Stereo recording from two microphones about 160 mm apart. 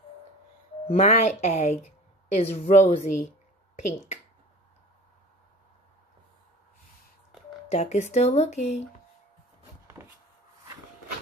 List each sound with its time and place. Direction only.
0.8 s speech: 45° left (ahead or behind)
7.7 s speech: 45° left (ahead or behind)